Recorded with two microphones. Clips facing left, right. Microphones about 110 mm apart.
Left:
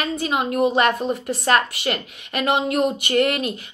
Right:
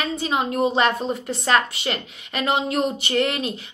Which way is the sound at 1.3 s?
50° left (ahead or behind).